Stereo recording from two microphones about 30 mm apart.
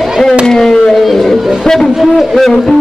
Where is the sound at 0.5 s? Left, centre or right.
Centre.